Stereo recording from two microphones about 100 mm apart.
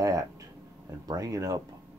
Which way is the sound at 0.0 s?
35° right (ahead or behind).